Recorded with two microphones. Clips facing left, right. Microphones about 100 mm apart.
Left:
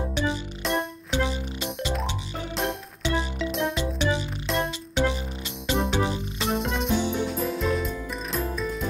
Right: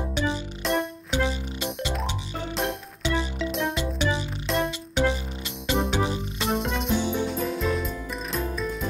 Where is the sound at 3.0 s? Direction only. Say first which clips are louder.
Even; 20° left (ahead or behind).